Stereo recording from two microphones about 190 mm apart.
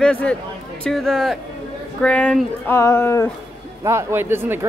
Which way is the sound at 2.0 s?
5° left (ahead or behind).